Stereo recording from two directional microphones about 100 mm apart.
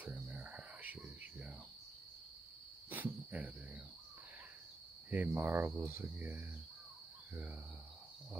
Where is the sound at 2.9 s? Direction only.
15° right (ahead or behind).